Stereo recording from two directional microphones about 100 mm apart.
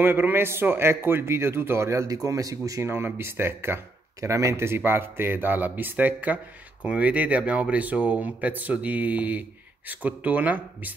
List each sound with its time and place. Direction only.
0.0 s a man's voice: 20° right (ahead or behind)
2.9 s speech: 25° right (ahead or behind)